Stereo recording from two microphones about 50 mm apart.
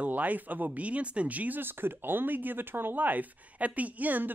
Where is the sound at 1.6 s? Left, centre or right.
Right.